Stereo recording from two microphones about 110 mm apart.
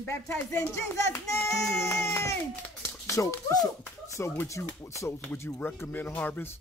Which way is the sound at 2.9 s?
25° left (ahead or behind).